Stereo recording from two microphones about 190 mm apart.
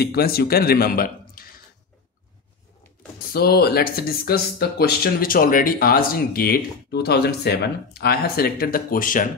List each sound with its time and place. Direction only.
0.0 s speech: 55° left (ahead or behind)
3.3 s speech: 55° left (ahead or behind)